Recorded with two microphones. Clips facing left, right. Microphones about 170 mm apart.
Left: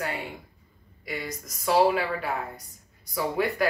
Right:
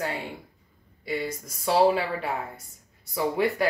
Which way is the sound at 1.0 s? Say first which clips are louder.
Right 4 dB; 30° right (ahead or behind).